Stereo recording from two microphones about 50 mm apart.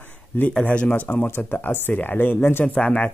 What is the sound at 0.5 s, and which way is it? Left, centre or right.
Speech, left.